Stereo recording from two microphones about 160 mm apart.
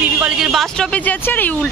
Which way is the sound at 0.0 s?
5° right (ahead or behind).